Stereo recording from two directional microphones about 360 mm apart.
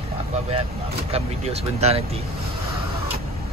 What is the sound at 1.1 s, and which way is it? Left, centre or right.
Speech, centre.